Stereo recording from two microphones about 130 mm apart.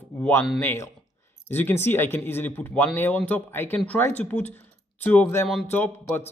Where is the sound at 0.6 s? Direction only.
20° left (ahead or behind).